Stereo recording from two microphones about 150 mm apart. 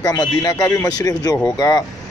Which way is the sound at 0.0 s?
25° left (ahead or behind).